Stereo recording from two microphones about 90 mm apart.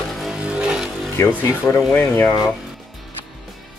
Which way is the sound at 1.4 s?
25° left (ahead or behind).